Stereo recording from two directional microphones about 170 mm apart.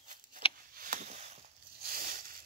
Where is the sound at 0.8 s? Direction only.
50° right (ahead or behind).